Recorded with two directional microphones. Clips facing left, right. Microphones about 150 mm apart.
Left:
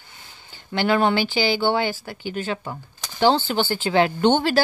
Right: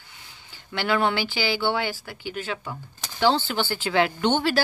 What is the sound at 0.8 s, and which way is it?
Speech, 30° left (ahead or behind).